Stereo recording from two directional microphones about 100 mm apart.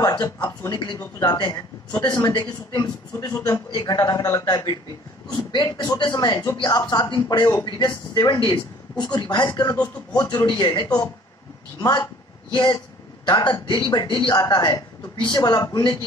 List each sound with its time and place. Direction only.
0.1 s a man's voice: 40° left (ahead or behind)
12.5 s speech: 50° left (ahead or behind)
14.3 s a man's voice: 45° left (ahead or behind)